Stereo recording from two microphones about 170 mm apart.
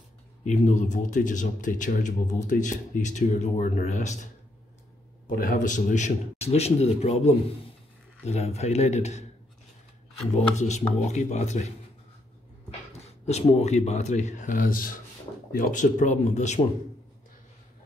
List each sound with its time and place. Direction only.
0.5 s speech: 45° left (ahead or behind)
5.2 s speech: 55° left (ahead or behind)
10.3 s speech: 45° left (ahead or behind)
13.0 s speech: 40° left (ahead or behind)